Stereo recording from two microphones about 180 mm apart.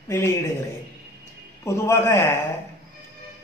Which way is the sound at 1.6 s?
15° left (ahead or behind).